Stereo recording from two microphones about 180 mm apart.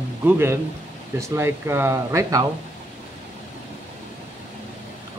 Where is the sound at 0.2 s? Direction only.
15° right (ahead or behind).